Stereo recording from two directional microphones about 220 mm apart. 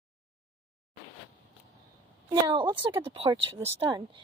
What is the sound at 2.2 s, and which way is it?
A woman's voice, 20° right (ahead or behind).